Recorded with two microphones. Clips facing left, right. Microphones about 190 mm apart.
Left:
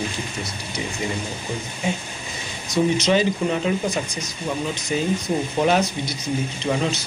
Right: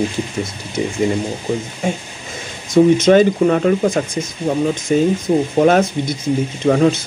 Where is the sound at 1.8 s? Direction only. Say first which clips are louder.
Right 1 dB; 50° right (ahead or behind).